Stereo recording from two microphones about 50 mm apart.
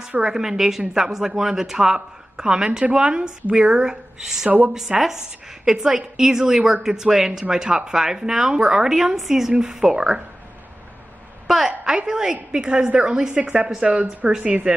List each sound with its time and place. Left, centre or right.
0.2 s a woman's voice: centre
4.5 s speech: right
4.7 s a woman's voice: centre
11.4 s a woman's voice: centre